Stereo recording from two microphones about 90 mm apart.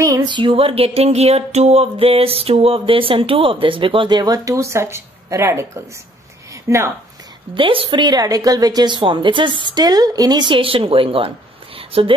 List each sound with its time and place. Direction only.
0.0 s a sound: 40° right (ahead or behind)
0.3 s speech: 80° right
2.0 s speech: 90° right; by 5.7 s 30° right (ahead or behind)
6.5 s a sound: 30° right (ahead or behind)
7.5 s a woman's voice: 75° right (ahead or behind)
9.7 s a woman's voice: 50° right (ahead or behind)
10.4 s a woman's voice: 75° right (ahead or behind)